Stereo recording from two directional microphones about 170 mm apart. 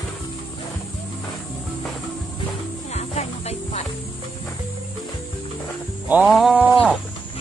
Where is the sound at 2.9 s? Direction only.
40° left (ahead or behind).